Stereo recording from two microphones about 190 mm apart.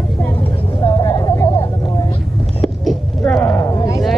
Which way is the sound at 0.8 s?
25° left (ahead or behind).